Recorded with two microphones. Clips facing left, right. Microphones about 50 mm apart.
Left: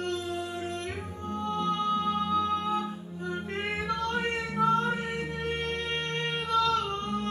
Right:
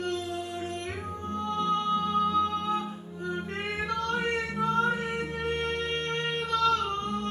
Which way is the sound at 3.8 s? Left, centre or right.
Left.